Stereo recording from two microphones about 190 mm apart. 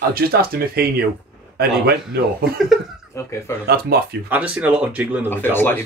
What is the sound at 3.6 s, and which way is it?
Speech, 55° right (ahead or behind).